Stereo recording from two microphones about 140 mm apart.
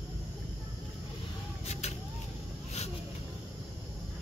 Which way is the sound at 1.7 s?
50° left (ahead or behind).